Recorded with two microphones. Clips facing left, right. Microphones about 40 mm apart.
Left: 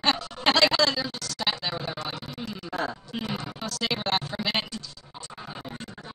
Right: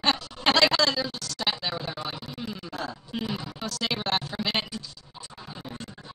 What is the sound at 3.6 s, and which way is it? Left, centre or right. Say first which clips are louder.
Music: even; centre.